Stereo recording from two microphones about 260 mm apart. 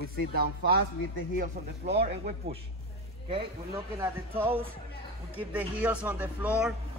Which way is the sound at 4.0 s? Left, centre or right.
Centre.